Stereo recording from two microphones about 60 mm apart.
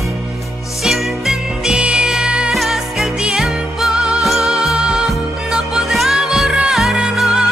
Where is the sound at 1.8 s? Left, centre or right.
Centre.